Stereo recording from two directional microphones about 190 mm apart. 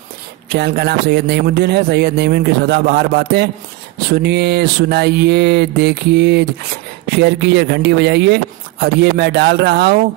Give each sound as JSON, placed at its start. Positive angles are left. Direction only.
{"t": 0.5, "sound": "a man's voice", "side_deg": -55}